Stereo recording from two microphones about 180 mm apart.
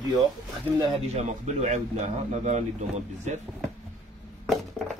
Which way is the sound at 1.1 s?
40° right (ahead or behind).